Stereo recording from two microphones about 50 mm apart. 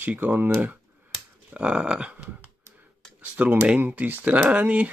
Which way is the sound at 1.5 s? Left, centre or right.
Right.